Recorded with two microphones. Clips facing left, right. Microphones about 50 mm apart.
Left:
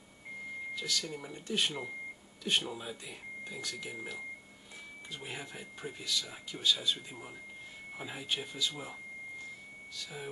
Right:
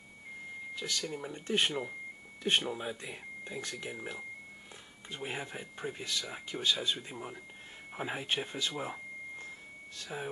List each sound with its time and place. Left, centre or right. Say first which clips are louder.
0.7 s speech: right 2 dB; right
1.3 s speech: right 3 dB; right
5.1 s speech: right 5 dB; right